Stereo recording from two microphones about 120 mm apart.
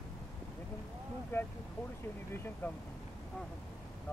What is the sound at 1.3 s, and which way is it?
Speech, 20° left (ahead or behind).